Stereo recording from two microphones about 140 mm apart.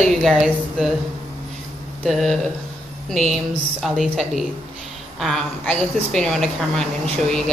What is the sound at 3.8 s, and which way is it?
A woman's voice, centre (ahead or behind).